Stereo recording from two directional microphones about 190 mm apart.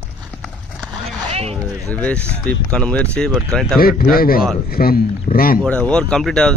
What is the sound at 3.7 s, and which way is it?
A man's voice, 50° left (ahead or behind).